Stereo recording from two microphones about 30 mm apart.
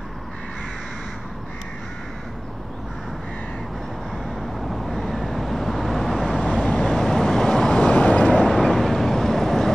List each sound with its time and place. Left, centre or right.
4.4 s vehicle: centre
6.6 s vehicle: left
6.9 s vehicle: centre
7.7 s vehicle: left
8.3 s vehicle: centre